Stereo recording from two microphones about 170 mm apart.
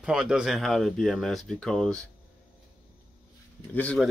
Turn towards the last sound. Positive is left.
turn(degrees=10)  # may be behind; listen again after turning